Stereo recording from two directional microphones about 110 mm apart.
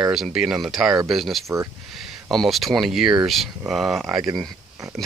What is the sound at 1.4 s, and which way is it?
Speech, 25° right (ahead or behind).